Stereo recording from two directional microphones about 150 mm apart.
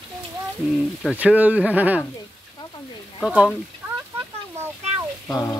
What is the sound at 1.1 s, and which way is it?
Speech, 10° right (ahead or behind).